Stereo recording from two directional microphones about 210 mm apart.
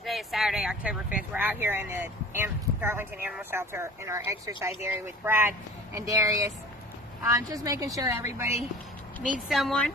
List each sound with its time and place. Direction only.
0.0 s speech: centre (ahead or behind); by 8.5 s 15° right (ahead or behind)
9.5 s speech: centre (ahead or behind)